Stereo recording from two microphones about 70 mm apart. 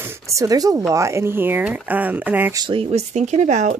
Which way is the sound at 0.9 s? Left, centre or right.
Right.